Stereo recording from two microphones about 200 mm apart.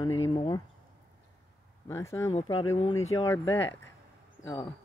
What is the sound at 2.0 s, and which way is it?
Speech, 15° left (ahead or behind).